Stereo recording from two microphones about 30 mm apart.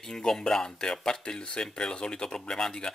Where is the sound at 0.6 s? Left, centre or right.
Left.